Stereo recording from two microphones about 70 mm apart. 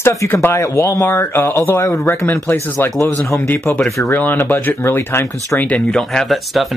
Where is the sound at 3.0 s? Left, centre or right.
Left.